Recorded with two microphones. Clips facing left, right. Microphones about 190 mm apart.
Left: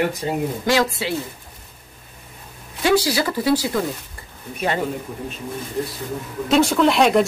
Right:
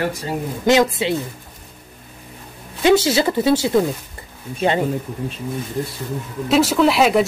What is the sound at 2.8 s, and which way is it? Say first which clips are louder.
Speech: right 4 dB; 25° right (ahead or behind).